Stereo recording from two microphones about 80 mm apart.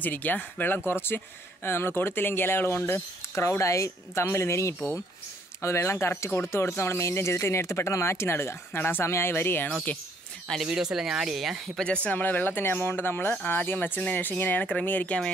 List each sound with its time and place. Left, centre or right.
0.0 s speech: left
10.6 s speech: centre
11.8 s speech: centre